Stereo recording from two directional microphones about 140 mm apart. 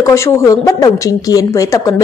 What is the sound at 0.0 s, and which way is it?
Speech, 20° left (ahead or behind).